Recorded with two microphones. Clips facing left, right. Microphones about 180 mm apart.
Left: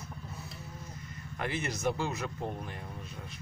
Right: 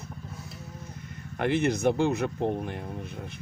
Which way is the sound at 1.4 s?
60° right (ahead or behind).